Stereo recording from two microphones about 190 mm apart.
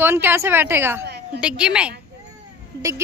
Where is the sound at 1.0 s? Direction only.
60° right (ahead or behind).